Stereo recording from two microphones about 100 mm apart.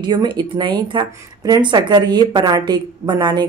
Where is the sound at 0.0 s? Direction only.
50° right (ahead or behind).